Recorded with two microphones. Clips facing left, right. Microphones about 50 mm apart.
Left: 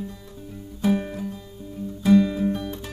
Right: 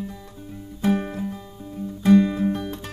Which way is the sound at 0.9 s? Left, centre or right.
Right.